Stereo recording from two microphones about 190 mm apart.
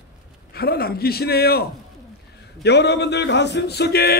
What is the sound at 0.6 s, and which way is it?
A man's voice, 55° left (ahead or behind).